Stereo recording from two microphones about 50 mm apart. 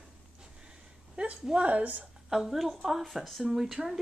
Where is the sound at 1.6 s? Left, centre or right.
Right.